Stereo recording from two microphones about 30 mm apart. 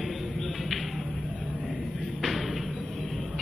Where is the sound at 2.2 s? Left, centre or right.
Centre.